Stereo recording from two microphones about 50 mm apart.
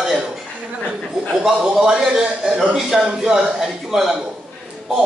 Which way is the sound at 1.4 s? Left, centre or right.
Centre.